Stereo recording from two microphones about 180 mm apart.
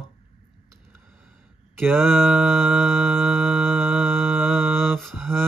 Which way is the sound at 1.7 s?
10° right (ahead or behind).